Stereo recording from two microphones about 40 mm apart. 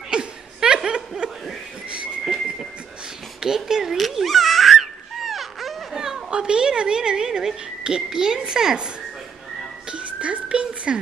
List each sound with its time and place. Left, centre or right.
0.1 s chuckle: right
0.8 s snicker: right
2.2 s a sound: centre
3.3 s speech: centre
3.9 s baby cry: centre
6.0 s speech: centre
9.9 s music: right